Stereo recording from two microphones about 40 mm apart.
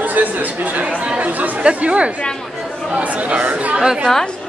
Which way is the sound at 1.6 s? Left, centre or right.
Right.